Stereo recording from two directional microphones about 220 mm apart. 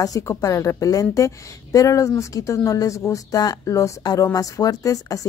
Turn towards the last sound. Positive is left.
turn(degrees=15)  # may be behind; listen again after turning